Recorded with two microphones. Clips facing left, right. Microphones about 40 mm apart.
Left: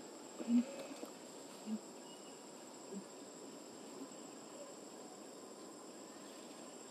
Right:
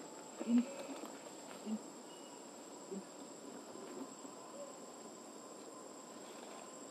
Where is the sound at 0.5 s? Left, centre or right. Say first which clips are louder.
Right 1 dB; right.